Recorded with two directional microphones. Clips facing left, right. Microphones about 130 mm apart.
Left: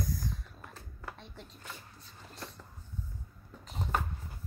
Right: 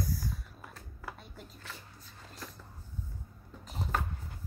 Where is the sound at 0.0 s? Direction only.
5° right (ahead or behind).